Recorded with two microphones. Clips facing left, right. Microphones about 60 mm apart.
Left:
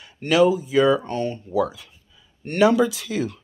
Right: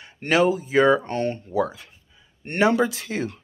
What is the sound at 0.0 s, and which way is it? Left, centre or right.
Speech, right.